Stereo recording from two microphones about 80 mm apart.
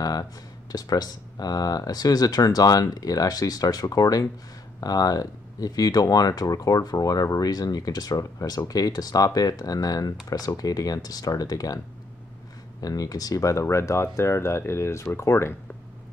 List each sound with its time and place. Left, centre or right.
0.0 s speech: left
12.8 s speech: left